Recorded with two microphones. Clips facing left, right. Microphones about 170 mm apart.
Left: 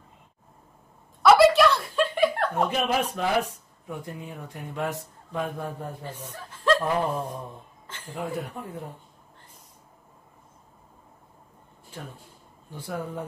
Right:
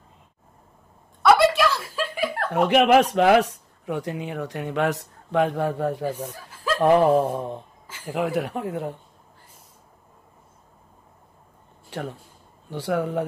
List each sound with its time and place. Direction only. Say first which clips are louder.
1.2 s chuckle: left 1 dB; centre (ahead or behind)
2.5 s speech: right 8 dB; 75° right (ahead or behind)
6.0 s speech: right 9 dB; 10° right (ahead or behind)
6.8 s speech: right 10 dB; 75° right (ahead or behind)
7.8 s a sound: right 2 dB; 10° right (ahead or behind)
8.1 s speech: right 7 dB; 80° right
11.9 s speech: right 9 dB; 75° right (ahead or behind)